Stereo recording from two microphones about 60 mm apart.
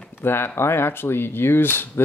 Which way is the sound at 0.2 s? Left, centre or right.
Left.